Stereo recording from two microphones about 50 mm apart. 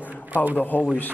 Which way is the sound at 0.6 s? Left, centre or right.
Left.